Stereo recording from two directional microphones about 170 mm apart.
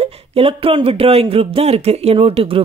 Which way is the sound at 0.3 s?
35° right (ahead or behind).